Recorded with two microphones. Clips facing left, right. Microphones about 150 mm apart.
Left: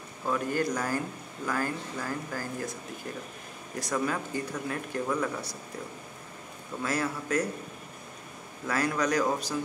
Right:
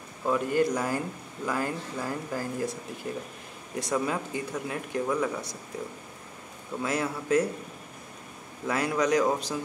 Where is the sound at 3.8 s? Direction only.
20° right (ahead or behind).